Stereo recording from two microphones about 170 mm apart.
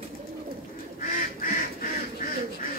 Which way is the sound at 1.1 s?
55° left (ahead or behind).